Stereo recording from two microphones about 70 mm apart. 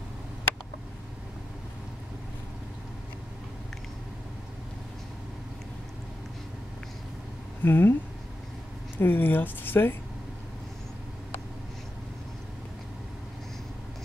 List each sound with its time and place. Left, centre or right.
7.6 s speech: left
8.9 s speech: left